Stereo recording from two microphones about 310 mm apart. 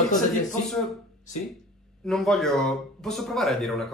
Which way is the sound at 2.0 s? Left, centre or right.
Centre.